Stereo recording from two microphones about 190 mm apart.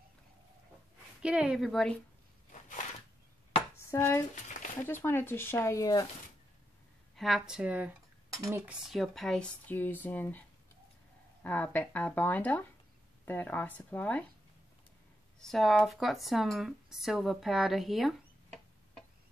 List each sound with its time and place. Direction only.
1.2 s a woman's voice: 5° right (ahead or behind)
2.5 s a sound: 40° left (ahead or behind)
3.9 s speech: 15° left (ahead or behind)
7.2 s a woman's voice: centre (ahead or behind)
8.4 s cutlery: 15° right (ahead or behind)
8.8 s speech: centre (ahead or behind)
11.4 s speech: 10° left (ahead or behind)
15.4 s speech: centre (ahead or behind)